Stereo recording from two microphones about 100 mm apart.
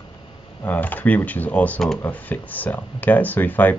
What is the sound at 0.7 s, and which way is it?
Speech, 15° left (ahead or behind).